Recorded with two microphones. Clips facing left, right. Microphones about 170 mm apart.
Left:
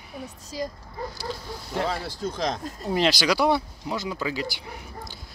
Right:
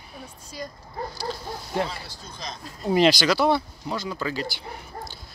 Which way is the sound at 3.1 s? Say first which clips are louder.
Right 1 dB; 10° left (ahead or behind).